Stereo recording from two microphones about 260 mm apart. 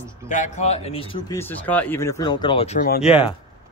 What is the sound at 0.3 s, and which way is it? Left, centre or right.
Speech, left.